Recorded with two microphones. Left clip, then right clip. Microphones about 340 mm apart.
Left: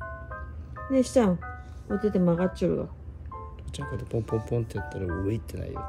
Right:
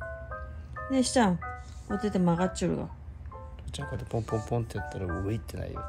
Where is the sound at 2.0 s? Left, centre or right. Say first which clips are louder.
Left 3 dB; right.